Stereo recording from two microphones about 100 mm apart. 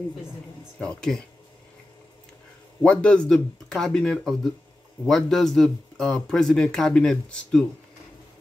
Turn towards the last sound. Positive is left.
turn(degrees=10)  # may be behind; listen again after turning